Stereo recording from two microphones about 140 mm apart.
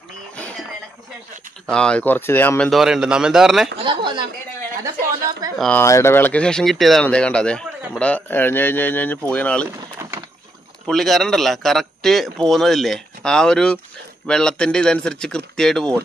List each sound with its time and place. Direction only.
1.7 s speech: 5° left (ahead or behind)
2.7 s a man's voice: 5° right (ahead or behind)
3.8 s speech: 35° right (ahead or behind)
5.6 s speech: 10° left (ahead or behind)
10.9 s a man's voice: centre (ahead or behind)